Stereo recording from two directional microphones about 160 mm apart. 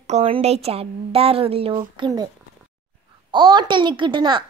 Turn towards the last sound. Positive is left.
turn(degrees=-30)  # may be behind; listen again after turning